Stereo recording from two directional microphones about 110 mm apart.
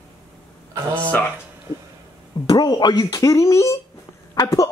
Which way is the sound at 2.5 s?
40° left (ahead or behind).